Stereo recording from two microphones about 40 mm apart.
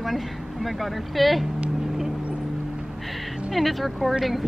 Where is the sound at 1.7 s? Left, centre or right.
Centre.